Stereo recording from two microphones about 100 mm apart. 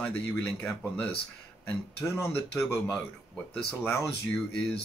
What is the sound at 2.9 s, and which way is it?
Speech, 10° left (ahead or behind).